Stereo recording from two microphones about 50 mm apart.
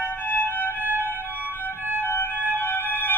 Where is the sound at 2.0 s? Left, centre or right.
Left.